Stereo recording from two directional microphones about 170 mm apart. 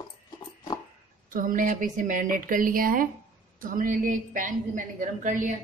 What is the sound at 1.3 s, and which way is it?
A woman's voice, 55° right (ahead or behind).